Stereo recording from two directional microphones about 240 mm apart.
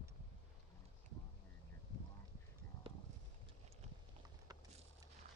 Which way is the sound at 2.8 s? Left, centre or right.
Right.